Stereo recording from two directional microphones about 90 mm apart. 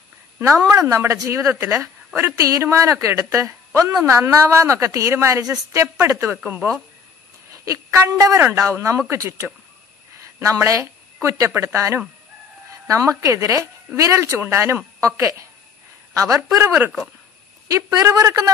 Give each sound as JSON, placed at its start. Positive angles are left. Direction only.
{"t": 0.7, "sound": "a man's voice", "side_deg": -35}
{"t": 1.7, "sound": "a sound", "side_deg": 0}
{"t": 2.1, "sound": "a man's voice", "side_deg": -35}
{"t": 6.3, "sound": "speech", "side_deg": -15}
{"t": 7.5, "sound": "a woman's voice", "side_deg": -40}
{"t": 16.6, "sound": "speech", "side_deg": -25}
{"t": 17.6, "sound": "a man's voice", "side_deg": -40}